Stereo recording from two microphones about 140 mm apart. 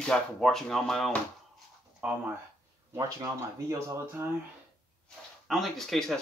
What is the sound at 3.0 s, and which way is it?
Speech, 25° right (ahead or behind).